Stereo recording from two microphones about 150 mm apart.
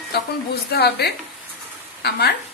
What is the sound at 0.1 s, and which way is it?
A woman's voice, 90° left.